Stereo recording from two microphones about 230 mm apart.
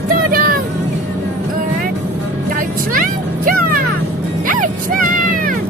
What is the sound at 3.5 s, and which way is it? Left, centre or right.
Music, right.